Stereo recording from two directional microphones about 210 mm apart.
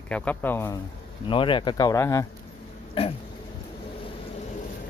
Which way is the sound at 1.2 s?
25° left (ahead or behind).